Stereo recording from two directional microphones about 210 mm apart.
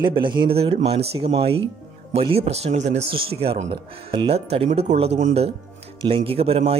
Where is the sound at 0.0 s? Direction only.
20° right (ahead or behind).